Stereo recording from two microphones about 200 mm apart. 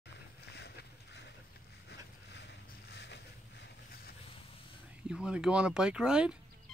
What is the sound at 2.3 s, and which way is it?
Vehicle, 60° left (ahead or behind).